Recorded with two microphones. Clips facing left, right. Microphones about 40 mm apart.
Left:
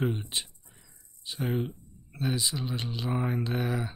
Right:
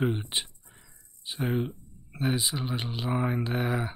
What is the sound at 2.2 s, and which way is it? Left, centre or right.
Speech, right.